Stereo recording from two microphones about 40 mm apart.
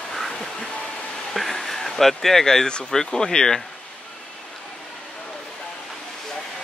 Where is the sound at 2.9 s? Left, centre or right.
Centre.